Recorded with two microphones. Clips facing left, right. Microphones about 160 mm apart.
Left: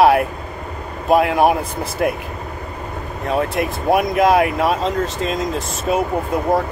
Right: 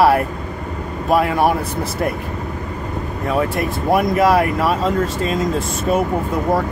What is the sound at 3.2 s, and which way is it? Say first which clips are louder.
Speech: even; centre (ahead or behind).